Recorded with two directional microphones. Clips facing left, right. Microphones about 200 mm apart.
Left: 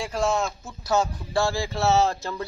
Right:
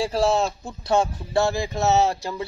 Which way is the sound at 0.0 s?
35° right (ahead or behind).